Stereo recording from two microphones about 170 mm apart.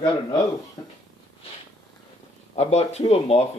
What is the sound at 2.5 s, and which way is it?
Speech, 40° left (ahead or behind).